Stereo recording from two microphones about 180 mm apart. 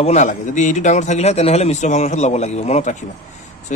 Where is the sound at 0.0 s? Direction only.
40° left (ahead or behind).